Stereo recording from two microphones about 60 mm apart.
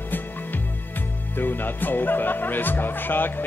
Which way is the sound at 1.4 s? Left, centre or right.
Left.